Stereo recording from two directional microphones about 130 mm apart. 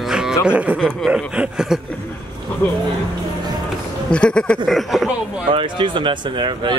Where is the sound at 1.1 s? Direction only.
10° right (ahead or behind).